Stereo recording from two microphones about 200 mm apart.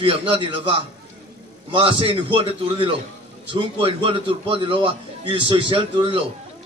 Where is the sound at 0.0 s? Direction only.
25° right (ahead or behind).